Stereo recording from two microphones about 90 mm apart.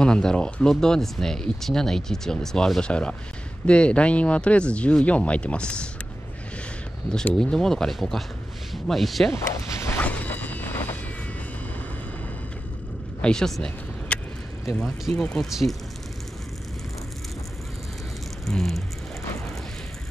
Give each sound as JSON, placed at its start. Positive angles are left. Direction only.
{"t": 0.0, "sound": "speech", "side_deg": 10}
{"t": 7.3, "sound": "speech", "side_deg": 5}
{"t": 9.8, "sound": "a sound", "side_deg": 20}
{"t": 13.2, "sound": "a sound", "side_deg": 10}
{"t": 14.7, "sound": "speech", "side_deg": 5}
{"t": 18.4, "sound": "speech", "side_deg": 5}